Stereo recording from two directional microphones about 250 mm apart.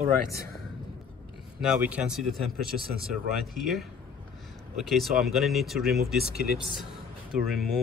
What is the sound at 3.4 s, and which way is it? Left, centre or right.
Speech, centre.